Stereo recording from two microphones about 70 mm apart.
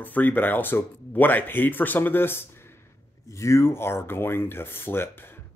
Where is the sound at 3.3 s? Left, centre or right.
Left.